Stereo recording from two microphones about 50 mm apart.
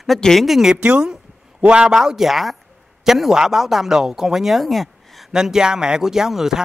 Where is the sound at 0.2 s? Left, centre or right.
Centre.